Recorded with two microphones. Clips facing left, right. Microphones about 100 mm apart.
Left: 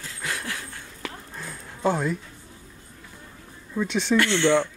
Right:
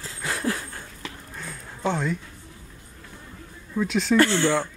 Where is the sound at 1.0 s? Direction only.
5° left (ahead or behind).